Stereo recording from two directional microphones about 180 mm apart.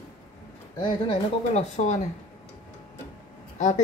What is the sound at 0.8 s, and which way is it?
Speech, 30° left (ahead or behind).